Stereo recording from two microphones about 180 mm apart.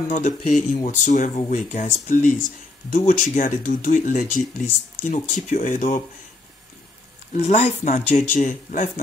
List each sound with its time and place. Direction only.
0.1 s speech: 45° left (ahead or behind)
7.3 s speech: 35° left (ahead or behind)